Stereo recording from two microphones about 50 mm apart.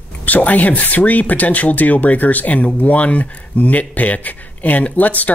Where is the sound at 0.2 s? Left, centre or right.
Left.